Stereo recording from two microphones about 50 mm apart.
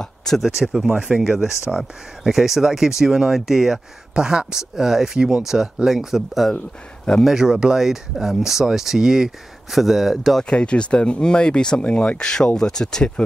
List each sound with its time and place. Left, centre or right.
0.0 s a sound: centre
0.4 s speech: centre
0.9 s speech: right
1.2 s speech: centre
4.1 s speech: centre
10.4 s speech: centre